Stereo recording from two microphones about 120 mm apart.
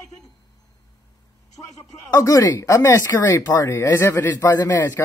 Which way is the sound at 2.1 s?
30° left (ahead or behind).